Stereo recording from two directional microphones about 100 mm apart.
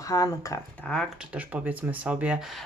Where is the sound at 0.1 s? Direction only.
35° left (ahead or behind).